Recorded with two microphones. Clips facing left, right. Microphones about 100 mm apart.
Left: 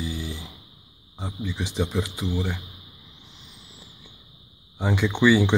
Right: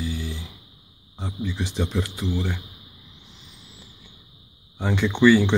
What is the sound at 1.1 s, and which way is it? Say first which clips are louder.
Speech: right 2 dB; 5° left (ahead or behind).